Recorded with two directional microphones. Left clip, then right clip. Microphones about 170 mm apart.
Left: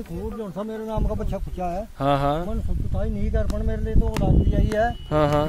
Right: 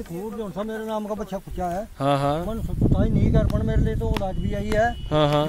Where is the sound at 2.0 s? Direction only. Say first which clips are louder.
Left 1 dB; centre (ahead or behind).